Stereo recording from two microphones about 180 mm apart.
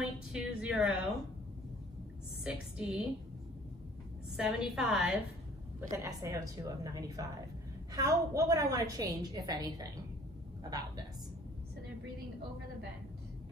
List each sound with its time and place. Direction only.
0.0 s a woman's voice: 5° right (ahead or behind)
2.4 s a woman's voice: 5° right (ahead or behind)
4.4 s a woman's voice: centre (ahead or behind)
5.8 s a woman's voice: 15° right (ahead or behind)